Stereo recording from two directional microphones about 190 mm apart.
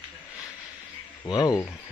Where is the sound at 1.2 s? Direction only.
20° left (ahead or behind).